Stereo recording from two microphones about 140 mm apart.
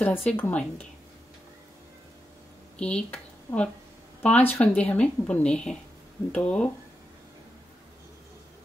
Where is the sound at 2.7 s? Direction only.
10° left (ahead or behind).